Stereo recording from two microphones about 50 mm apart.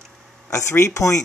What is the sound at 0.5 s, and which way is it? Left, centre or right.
Speech, left.